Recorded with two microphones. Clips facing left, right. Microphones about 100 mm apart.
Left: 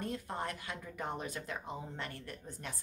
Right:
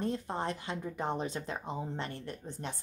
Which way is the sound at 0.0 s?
25° right (ahead or behind).